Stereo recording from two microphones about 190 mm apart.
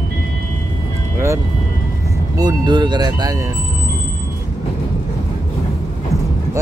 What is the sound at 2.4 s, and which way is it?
Speech, 25° right (ahead or behind).